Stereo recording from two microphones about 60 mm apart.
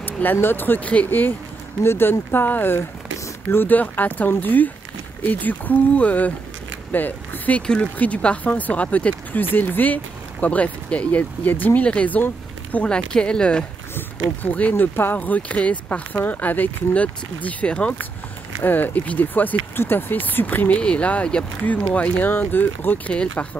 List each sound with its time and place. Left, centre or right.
0.0 s speech: left
1.8 s speech: left; by 13.7 s centre
13.9 s speech: left
18.6 s speech: left
23.1 s speech: centre